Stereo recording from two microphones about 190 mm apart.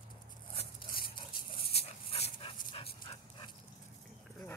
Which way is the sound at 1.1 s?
30° left (ahead or behind).